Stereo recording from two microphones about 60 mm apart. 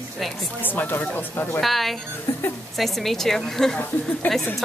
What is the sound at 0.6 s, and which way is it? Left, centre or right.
Speech, left.